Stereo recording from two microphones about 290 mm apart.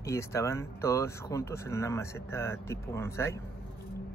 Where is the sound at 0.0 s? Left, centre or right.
Centre.